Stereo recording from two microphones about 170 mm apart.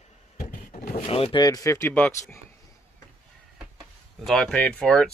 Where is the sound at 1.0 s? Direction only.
35° left (ahead or behind); by 2.3 s 10° left (ahead or behind).